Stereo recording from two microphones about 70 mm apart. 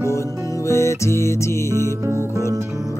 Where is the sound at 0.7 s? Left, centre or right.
Left.